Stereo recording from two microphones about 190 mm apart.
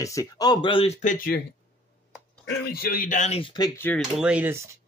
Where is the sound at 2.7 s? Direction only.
50° left (ahead or behind); by 4.0 s 10° left (ahead or behind).